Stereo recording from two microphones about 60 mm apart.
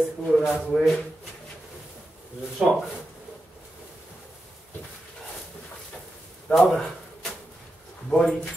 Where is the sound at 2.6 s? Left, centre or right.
Centre.